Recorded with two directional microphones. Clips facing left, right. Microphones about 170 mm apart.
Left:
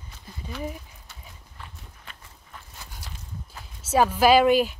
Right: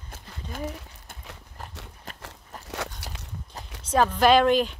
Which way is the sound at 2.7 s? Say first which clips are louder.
Right 17 dB; 80° right.